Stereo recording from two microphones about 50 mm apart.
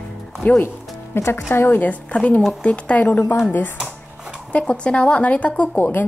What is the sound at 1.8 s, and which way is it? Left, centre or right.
A woman's voice, left.